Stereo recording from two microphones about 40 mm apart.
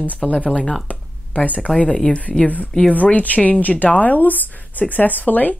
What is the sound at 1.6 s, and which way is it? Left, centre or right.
Speech, left.